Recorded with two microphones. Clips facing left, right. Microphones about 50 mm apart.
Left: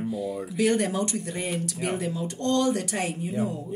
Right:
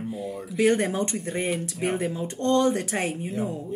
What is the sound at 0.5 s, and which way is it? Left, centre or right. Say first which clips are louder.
Speech: right 2 dB; right.